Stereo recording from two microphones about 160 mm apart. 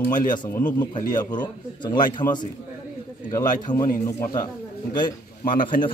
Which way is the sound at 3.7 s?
30° left (ahead or behind).